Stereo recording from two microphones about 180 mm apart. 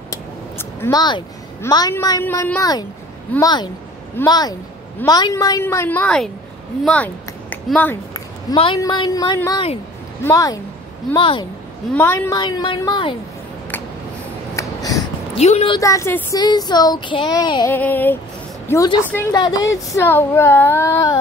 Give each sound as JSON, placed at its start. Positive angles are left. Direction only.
{"t": 0.1, "sound": "a sound", "side_deg": 15}
{"t": 1.6, "sound": "speech", "side_deg": 20}
{"t": 8.1, "sound": "a woman's voice", "side_deg": 25}
{"t": 11.9, "sound": "speech", "side_deg": 15}
{"t": 14.5, "sound": "a sound", "side_deg": 20}
{"t": 15.3, "sound": "a woman's voice", "side_deg": 35}
{"t": 15.8, "sound": "speech", "side_deg": 15}
{"t": 17.6, "sound": "speech", "side_deg": 10}
{"t": 19.3, "sound": "speech", "side_deg": 25}